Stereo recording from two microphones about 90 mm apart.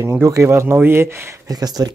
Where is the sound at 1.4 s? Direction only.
45° right (ahead or behind).